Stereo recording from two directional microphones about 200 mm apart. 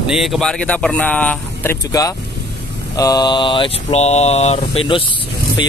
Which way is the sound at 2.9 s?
20° left (ahead or behind).